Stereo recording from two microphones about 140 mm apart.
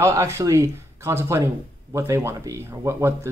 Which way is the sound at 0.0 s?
20° right (ahead or behind).